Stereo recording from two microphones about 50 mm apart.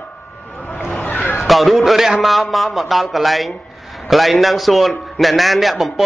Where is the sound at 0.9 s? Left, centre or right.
Left.